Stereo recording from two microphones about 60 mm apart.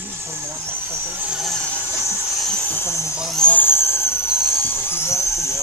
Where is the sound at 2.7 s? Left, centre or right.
Left.